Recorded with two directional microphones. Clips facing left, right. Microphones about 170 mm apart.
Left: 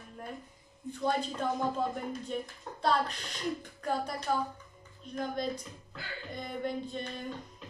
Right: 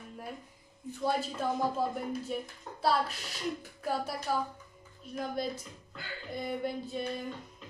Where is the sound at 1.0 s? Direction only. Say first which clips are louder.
Even; 5° right (ahead or behind).